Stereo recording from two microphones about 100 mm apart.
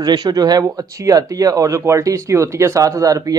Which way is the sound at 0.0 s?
40° right (ahead or behind).